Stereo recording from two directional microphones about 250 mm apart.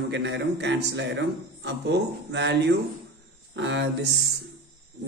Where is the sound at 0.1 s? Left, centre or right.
Right.